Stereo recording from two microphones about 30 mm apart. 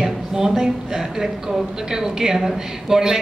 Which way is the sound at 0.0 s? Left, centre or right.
Centre.